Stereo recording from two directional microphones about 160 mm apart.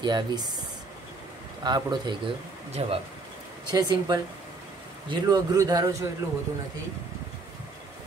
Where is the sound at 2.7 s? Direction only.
40° right (ahead or behind).